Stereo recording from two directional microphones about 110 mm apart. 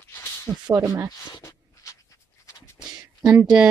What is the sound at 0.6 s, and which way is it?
Speech, 35° right (ahead or behind).